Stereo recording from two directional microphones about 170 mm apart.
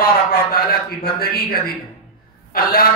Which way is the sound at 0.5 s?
65° left (ahead or behind).